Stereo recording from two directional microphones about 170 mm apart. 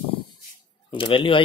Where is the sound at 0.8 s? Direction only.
30° left (ahead or behind).